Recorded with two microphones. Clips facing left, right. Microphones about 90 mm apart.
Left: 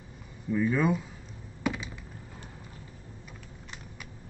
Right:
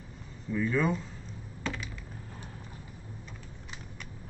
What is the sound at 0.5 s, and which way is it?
Speech, 10° left (ahead or behind).